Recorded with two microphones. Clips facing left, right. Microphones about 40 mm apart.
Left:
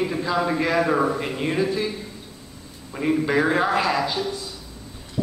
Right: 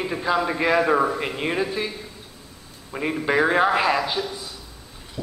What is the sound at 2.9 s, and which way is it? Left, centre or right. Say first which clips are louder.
A man's voice: left 1 dB; centre.